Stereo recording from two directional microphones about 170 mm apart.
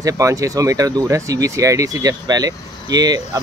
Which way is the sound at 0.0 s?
20° right (ahead or behind).